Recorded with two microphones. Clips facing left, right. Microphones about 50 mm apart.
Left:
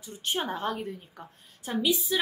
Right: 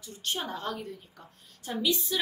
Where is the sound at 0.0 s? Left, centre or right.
Left.